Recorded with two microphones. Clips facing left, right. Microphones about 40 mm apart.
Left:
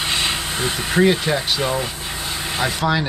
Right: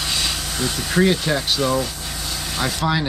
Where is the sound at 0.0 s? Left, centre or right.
Left.